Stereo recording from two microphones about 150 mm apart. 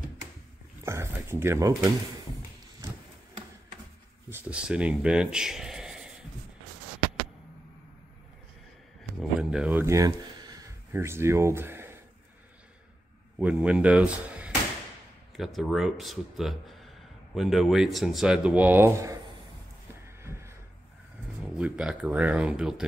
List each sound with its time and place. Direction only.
0.8 s speech: 15° right (ahead or behind)
4.3 s speech: 10° right (ahead or behind)
9.4 s speech: 5° right (ahead or behind)
13.4 s speech: 5° right (ahead or behind)
20.2 s a sound: 20° right (ahead or behind)
21.5 s speech: 5° right (ahead or behind)